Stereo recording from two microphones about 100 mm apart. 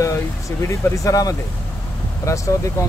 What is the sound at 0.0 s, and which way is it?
Speech, 30° left (ahead or behind).